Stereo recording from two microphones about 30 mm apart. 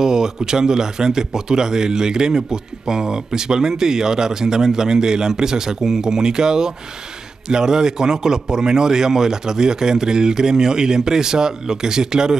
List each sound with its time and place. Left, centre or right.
0.0 s speech: right